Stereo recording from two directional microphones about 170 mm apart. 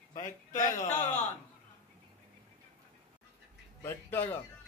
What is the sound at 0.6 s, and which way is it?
Speech, 45° left (ahead or behind).